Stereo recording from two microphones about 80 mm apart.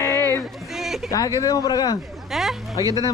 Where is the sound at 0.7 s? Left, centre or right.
Centre.